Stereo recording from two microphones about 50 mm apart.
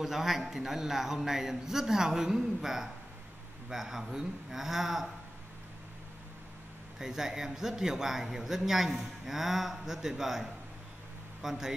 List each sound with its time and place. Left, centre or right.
0.0 s a man's voice: centre
7.0 s a man's voice: centre